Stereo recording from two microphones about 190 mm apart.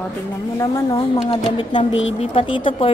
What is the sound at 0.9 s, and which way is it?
A woman's voice, 30° left (ahead or behind).